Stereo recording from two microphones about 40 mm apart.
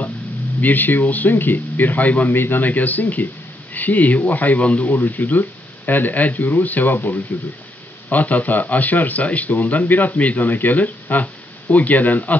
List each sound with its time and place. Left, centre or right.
0.6 s a man's voice: left
2.3 s a man's voice: left
2.6 s a man's voice: left
4.9 s a man's voice: left
8.1 s a man's voice: left